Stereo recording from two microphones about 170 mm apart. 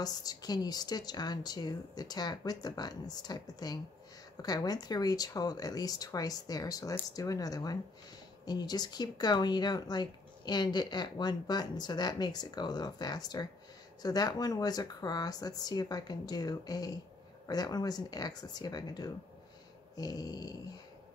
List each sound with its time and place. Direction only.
0.0 s speech: 25° left (ahead or behind)